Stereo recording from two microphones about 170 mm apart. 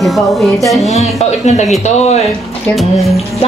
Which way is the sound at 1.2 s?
40° left (ahead or behind).